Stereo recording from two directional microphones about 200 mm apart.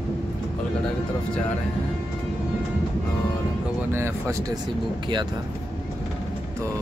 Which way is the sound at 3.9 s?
15° right (ahead or behind).